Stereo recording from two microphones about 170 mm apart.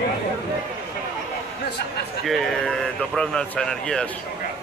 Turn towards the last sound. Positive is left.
turn(degrees=5)  # may be behind; listen again after turning